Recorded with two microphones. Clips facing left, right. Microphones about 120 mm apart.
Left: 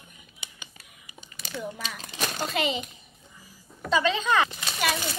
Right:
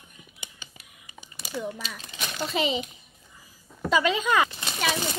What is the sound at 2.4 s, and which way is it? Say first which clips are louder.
Speech: right 3 dB; centre (ahead or behind).